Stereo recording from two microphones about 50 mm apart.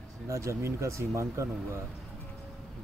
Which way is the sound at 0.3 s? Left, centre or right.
Right.